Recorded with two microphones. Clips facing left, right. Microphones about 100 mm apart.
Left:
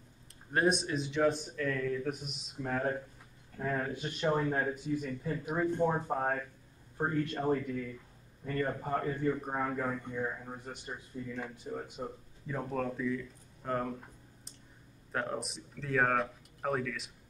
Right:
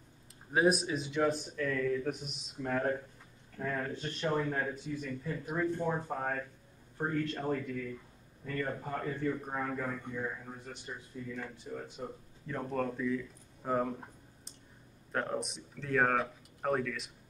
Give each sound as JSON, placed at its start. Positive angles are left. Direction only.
{"t": 0.5, "sound": "speech", "side_deg": -5}
{"t": 3.5, "sound": "a man's voice", "side_deg": 15}
{"t": 12.5, "sound": "speech", "side_deg": 0}
{"t": 15.1, "sound": "speech", "side_deg": 0}